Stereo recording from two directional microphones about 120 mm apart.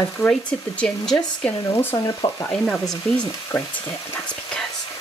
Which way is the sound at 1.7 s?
20° left (ahead or behind).